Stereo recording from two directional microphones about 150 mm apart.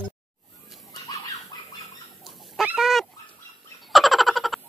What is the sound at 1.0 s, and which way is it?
Chicken, 25° left (ahead or behind).